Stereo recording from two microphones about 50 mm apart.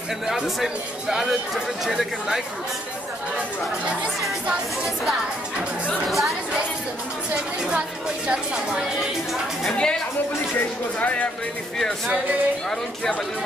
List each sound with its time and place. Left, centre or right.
0.3 s speech: centre
6.0 s speech: centre
9.7 s a woman's voice: centre
11.0 s speech: left